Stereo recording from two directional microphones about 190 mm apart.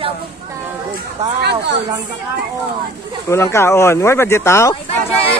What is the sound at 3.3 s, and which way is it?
A man's voice, 15° left (ahead or behind).